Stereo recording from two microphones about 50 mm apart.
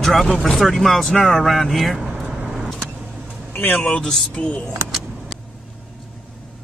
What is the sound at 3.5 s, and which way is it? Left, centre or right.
Speech, left.